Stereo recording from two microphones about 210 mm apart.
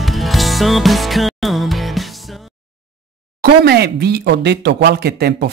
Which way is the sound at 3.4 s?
50° right (ahead or behind).